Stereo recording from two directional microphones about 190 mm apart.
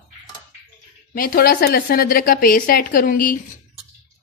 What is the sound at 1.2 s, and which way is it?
A woman's voice, 50° left (ahead or behind).